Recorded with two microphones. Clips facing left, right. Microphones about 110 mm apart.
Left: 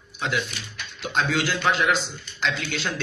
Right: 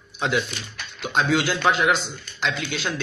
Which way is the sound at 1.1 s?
15° right (ahead or behind).